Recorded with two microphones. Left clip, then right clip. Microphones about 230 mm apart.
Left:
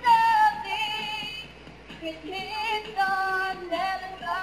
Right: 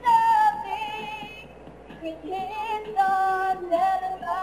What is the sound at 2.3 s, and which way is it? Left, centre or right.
Female singing, centre.